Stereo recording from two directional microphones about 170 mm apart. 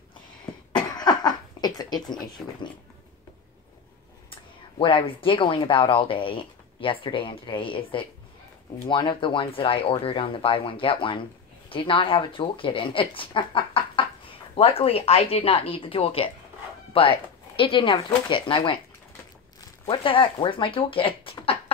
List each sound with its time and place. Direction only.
0.7 s cough: 25° left (ahead or behind)
4.3 s speech: 30° left (ahead or behind)
19.9 s speech: 30° left (ahead or behind)